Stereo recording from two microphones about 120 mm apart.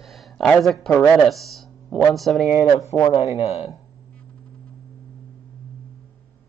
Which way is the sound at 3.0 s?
30° left (ahead or behind).